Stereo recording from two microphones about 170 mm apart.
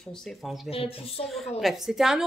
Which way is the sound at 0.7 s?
35° left (ahead or behind).